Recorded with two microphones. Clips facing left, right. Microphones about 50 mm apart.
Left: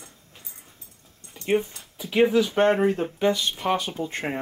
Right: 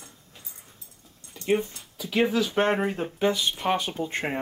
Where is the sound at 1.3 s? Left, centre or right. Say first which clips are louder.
Left 1 dB; centre.